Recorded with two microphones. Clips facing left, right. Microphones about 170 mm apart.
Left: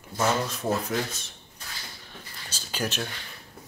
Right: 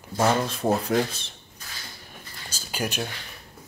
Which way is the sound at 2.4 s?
10° right (ahead or behind).